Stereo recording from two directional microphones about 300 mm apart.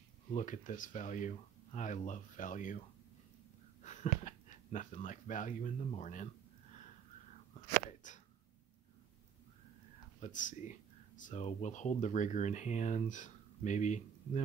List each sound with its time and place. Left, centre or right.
0.3 s speech: left
3.8 s speech: left
8.0 s a sound: left
10.2 s speech: left